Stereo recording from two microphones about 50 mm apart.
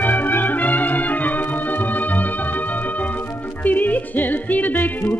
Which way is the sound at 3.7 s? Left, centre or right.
Left.